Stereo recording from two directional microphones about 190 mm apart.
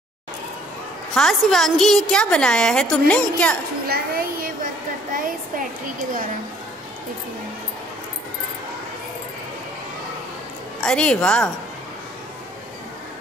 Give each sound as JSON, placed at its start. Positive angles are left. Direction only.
{"t": 1.1, "sound": "a woman's voice", "side_deg": 0}
{"t": 3.8, "sound": "a sound", "side_deg": -55}
{"t": 10.8, "sound": "a woman's voice", "side_deg": 5}